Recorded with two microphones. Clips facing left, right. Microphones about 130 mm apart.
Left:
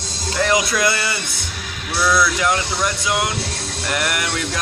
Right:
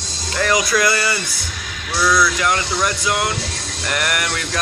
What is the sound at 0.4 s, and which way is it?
Speech, 20° left (ahead or behind).